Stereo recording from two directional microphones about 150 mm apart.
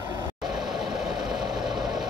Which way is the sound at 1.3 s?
Centre (ahead or behind).